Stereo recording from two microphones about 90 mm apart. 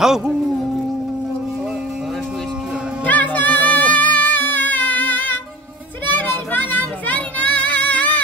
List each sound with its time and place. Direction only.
0.0 s music: 5° right (ahead or behind)
3.1 s music: 20° left (ahead or behind)
6.0 s child singing: 20° left (ahead or behind)